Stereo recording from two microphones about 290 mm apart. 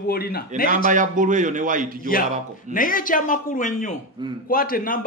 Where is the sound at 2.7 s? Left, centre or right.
Left.